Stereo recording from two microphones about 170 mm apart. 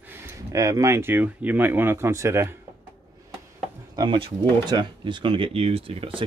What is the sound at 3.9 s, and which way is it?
Speech, 25° right (ahead or behind).